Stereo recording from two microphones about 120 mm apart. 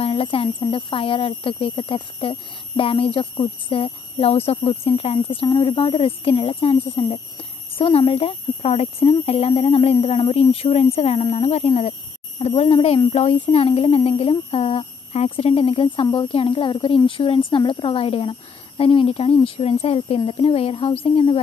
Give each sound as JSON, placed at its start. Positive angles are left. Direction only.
{"t": 0.0, "sound": "speech", "side_deg": 50}